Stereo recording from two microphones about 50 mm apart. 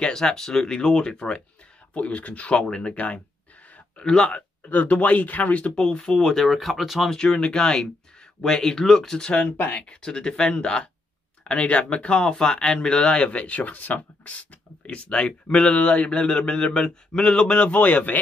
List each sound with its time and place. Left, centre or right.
0.0 s speech: centre
4.0 s speech: centre
4.6 s speech: left
6.2 s speech: centre
7.2 s speech: centre
9.4 s speech: left
9.8 s speech: centre; by 18.1 s left